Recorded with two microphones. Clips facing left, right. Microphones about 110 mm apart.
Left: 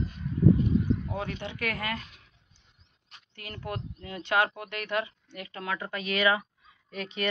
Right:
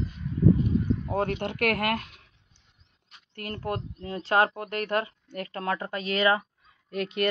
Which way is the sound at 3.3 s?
45° right (ahead or behind).